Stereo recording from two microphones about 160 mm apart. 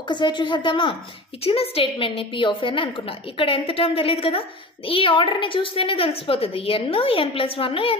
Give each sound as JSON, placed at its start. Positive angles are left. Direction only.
{"t": 0.1, "sound": "a woman's voice", "side_deg": 30}